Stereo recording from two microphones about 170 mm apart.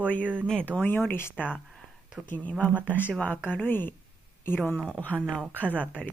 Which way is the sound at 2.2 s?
10° left (ahead or behind).